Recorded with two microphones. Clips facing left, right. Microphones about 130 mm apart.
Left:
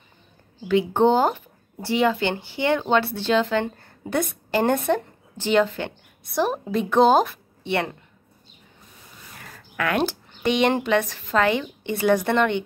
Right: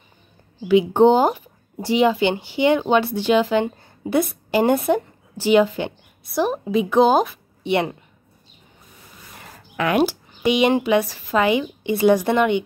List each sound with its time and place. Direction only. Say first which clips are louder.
0.7 s speech: right 4 dB; 15° right (ahead or behind)
6.2 s a woman's voice: right 2 dB; centre (ahead or behind)
7.6 s speech: right 4 dB; 15° right (ahead or behind)
9.4 s speech: right 3 dB; 20° right (ahead or behind)